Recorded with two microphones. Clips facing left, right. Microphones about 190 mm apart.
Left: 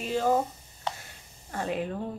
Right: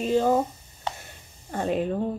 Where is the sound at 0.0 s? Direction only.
20° right (ahead or behind).